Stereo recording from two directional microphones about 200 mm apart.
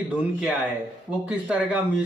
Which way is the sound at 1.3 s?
5° right (ahead or behind).